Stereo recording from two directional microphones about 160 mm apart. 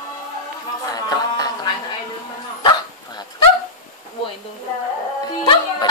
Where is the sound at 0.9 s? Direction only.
25° left (ahead or behind).